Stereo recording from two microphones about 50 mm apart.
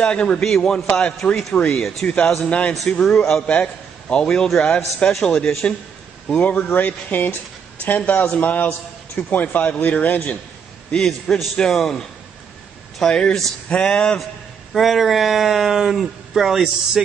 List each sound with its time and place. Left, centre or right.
0.0 s a man's voice: left
0.5 s speech: centre
0.7 s a man's voice: centre
1.8 s speech: centre
2.0 s a man's voice: left
11.1 s speech: centre
11.5 s speech: centre
14.7 s speech: centre